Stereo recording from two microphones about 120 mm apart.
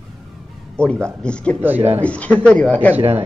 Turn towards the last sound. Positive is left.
turn(degrees=-15)  # may be behind; listen again after turning